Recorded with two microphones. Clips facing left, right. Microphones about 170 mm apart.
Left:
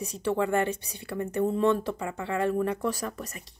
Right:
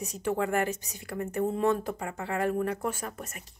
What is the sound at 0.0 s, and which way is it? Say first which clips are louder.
A woman's voice: left 2 dB; 35° left (ahead or behind).